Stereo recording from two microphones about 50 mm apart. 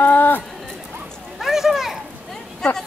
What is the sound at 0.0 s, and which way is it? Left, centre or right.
Run, left.